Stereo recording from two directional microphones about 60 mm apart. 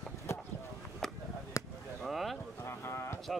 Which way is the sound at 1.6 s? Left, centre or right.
Left.